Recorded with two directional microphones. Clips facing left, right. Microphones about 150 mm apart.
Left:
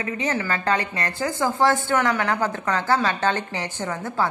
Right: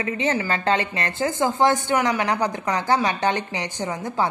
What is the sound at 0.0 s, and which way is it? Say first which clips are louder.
A woman's voice: right 2 dB; 25° right (ahead or behind).